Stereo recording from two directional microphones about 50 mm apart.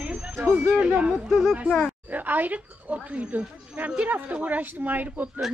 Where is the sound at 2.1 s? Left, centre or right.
Right.